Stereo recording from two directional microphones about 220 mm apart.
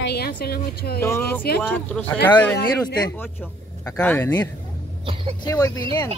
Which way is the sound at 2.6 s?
15° left (ahead or behind).